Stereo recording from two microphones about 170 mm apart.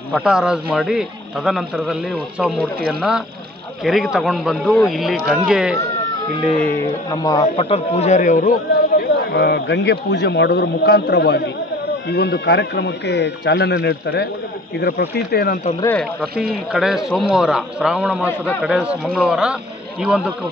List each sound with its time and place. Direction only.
0.1 s a man's voice: 5° right (ahead or behind)
7.1 s speech: 20° left (ahead or behind)
7.5 s a man's voice: 35° left (ahead or behind); by 15.7 s 55° left (ahead or behind)
16.0 s a man's voice: 5° left (ahead or behind)